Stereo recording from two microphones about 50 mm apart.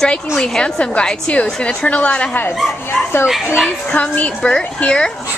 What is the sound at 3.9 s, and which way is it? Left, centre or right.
A woman's voice, left.